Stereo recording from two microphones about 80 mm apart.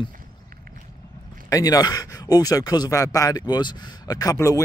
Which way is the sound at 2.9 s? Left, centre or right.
Left.